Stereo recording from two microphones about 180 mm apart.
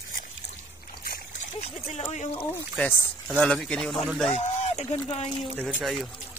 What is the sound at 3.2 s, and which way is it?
Speech, 5° left (ahead or behind).